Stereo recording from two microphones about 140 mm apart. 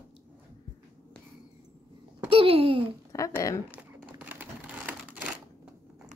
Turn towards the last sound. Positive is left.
turn(degrees=-10)  # may be behind; listen again after turning